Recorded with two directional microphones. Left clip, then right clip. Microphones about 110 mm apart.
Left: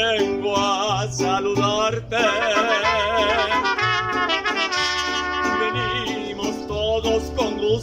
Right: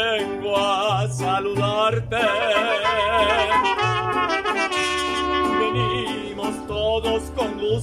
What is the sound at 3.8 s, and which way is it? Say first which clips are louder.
Trumpet: even; 20° right (ahead or behind).